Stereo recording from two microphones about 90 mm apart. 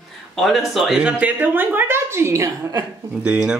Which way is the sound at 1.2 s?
20° right (ahead or behind).